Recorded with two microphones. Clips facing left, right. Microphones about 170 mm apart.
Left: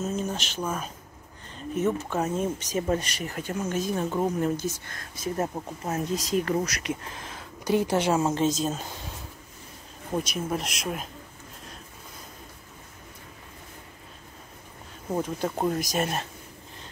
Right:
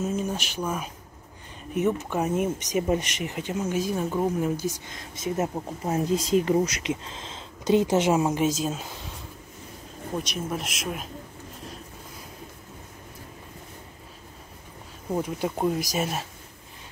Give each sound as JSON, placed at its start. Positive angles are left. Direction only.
{"t": 0.0, "sound": "speech", "side_deg": -10}
{"t": 6.1, "sound": "speech", "side_deg": -30}
{"t": 10.1, "sound": "speech", "side_deg": 0}
{"t": 15.2, "sound": "speech", "side_deg": -10}
{"t": 15.5, "sound": "speech", "side_deg": 0}